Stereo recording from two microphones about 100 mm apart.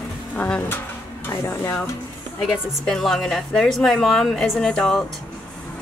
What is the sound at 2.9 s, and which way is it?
A woman's voice, 5° left (ahead or behind).